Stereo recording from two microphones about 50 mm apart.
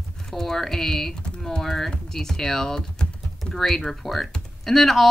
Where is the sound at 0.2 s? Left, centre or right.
Centre.